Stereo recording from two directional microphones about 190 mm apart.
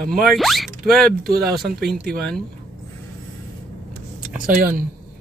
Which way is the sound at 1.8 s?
55° right (ahead or behind).